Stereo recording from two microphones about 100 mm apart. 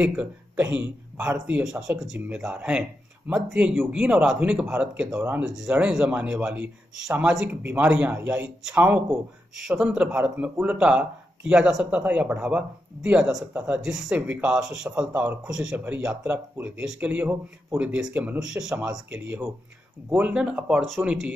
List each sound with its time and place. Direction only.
0.0 s a man's voice: 10° right (ahead or behind)